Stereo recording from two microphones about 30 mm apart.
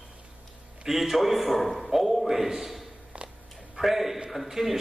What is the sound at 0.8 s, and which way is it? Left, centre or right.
A man's voice, centre.